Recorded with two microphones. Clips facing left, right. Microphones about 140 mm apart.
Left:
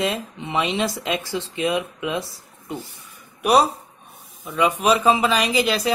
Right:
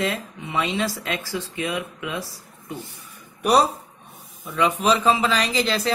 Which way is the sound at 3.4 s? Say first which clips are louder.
Left 1 dB; 10° left (ahead or behind).